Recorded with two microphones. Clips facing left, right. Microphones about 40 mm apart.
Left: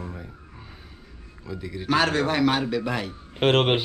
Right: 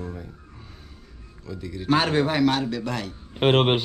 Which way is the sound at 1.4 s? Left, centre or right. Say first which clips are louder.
Even; centre.